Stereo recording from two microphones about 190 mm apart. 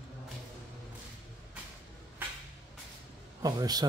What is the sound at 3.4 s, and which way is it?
Speech, 20° right (ahead or behind).